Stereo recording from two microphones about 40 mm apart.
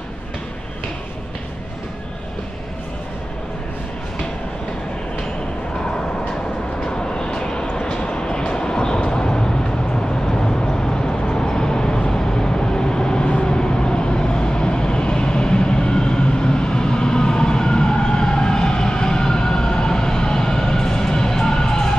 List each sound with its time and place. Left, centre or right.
6.8 s vehicle: centre
7.8 s train: left